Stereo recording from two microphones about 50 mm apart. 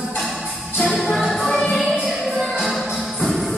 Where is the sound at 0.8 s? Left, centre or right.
Centre.